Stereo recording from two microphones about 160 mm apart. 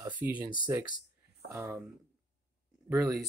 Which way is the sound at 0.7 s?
15° right (ahead or behind).